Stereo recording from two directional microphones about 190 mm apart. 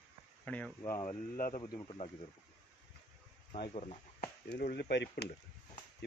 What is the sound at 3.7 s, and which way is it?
Speech, 35° left (ahead or behind).